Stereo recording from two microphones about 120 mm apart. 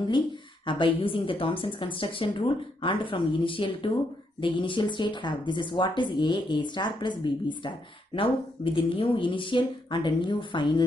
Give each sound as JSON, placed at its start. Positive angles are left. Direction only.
{"t": 0.7, "sound": "a woman's voice", "side_deg": 45}